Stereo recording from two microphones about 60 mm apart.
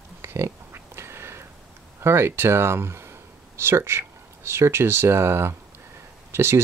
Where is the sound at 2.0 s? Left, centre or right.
Right.